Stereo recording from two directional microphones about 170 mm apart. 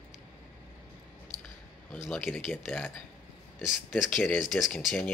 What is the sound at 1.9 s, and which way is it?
A man's voice, centre (ahead or behind).